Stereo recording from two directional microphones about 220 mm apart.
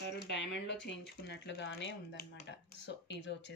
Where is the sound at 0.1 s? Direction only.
50° left (ahead or behind).